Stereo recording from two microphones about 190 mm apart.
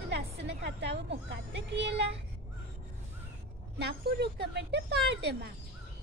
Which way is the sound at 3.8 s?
60° right (ahead or behind).